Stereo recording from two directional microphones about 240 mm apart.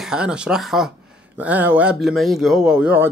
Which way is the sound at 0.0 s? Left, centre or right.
Centre.